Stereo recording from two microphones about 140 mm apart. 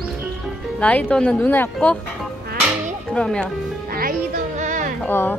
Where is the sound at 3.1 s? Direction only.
5° left (ahead or behind).